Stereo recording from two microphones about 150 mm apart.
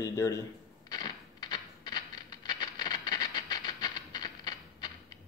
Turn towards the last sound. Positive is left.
turn(degrees=30)  # may be behind; listen again after turning